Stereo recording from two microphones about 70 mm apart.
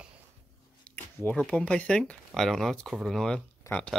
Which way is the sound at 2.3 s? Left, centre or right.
Centre.